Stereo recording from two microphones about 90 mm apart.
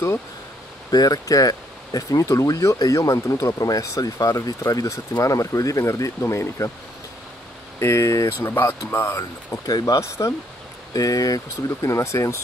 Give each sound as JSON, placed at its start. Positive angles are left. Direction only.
{"t": 0.9, "sound": "speech", "side_deg": 45}
{"t": 7.8, "sound": "speech", "side_deg": 35}
{"t": 9.7, "sound": "speech", "side_deg": 45}